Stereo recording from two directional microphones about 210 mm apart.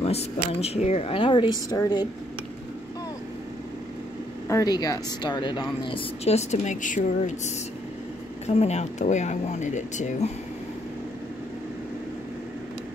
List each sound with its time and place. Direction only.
0.0 s a woman's voice: 30° left (ahead or behind)
4.5 s a woman's voice: 15° left (ahead or behind); by 10.3 s 35° left (ahead or behind)